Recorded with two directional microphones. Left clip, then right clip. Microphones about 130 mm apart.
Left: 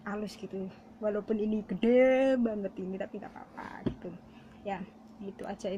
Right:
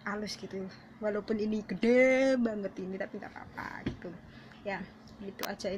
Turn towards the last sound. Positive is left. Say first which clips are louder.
# right 1 dB
turn(degrees=15)  # may be behind; listen again after turning